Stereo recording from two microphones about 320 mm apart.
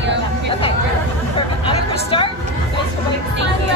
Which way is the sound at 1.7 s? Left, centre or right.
Centre.